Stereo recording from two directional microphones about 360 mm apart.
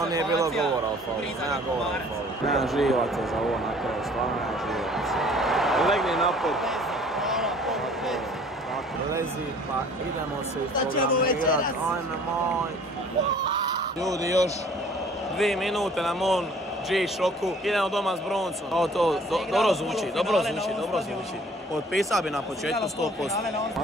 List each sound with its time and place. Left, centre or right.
0.1 s a man's voice: centre
2.4 s speech: centre
4.9 s a sound: centre
11.2 s a man's voice: left
14.0 s a man's voice: centre